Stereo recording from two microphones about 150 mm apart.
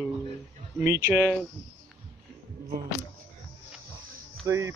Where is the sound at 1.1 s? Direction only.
10° right (ahead or behind).